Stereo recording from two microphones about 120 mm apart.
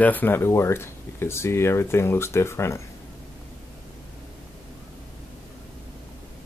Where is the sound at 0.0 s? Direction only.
15° left (ahead or behind).